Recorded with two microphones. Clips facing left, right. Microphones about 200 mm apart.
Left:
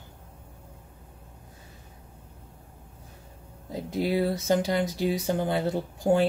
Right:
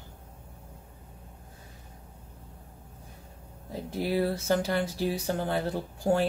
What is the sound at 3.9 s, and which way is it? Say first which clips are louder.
Speech: left 2 dB; 20° left (ahead or behind).